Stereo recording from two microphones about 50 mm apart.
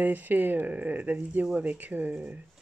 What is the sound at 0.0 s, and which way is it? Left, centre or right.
Speech, right.